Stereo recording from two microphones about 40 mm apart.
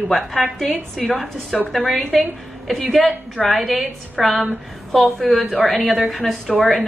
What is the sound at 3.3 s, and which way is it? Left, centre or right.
A woman's voice, centre.